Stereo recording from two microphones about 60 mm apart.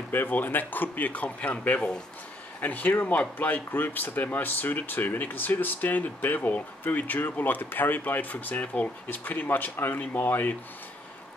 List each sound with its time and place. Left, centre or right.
0.1 s speech: left